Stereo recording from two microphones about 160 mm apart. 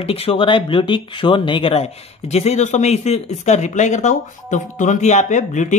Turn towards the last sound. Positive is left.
turn(degrees=50)  # may be behind; listen again after turning